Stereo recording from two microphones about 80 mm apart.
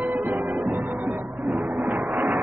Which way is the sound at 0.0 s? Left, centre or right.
Right.